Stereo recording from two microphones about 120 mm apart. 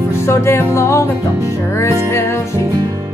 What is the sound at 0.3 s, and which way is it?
Music, 20° left (ahead or behind).